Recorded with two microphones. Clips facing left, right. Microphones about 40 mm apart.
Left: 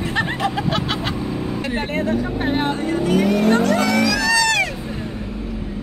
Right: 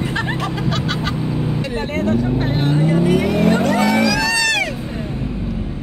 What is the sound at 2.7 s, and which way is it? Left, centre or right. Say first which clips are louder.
Speech: right 3 dB; centre.